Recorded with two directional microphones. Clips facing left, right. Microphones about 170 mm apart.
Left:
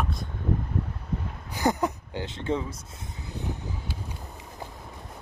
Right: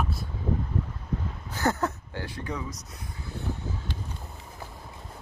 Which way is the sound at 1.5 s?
15° left (ahead or behind).